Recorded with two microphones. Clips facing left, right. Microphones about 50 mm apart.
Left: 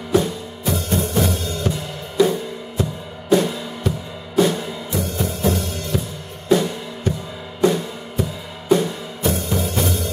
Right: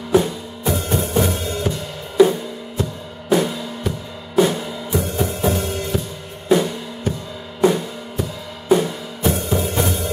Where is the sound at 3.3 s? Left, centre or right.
Centre.